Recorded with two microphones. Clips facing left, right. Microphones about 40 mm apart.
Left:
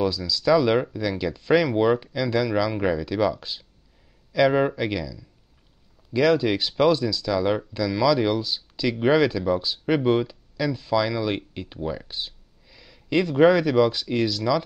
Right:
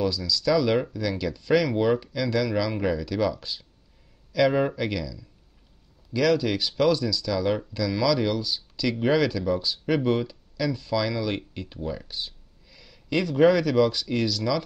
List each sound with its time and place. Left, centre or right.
0.0 s speech: centre
1.7 s speech: centre